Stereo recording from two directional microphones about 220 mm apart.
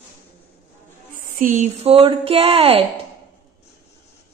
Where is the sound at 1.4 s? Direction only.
35° right (ahead or behind).